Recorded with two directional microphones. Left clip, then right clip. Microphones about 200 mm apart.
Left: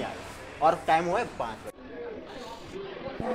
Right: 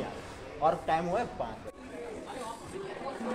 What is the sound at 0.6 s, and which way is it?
Speech, 25° left (ahead or behind).